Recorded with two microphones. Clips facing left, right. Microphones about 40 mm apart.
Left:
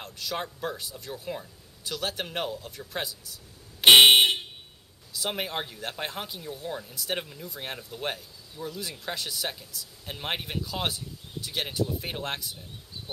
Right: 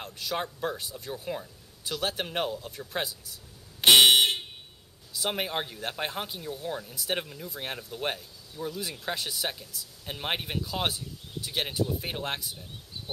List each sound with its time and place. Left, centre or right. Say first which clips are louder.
0.0 s speech: right 1 dB; centre
3.8 s a sound: left 3 dB; left
5.1 s speech: right 1 dB; centre